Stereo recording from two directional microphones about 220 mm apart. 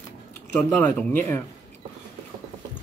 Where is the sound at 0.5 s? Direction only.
10° left (ahead or behind).